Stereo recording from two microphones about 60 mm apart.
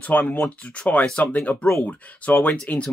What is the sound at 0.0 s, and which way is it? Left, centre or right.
Speech, left.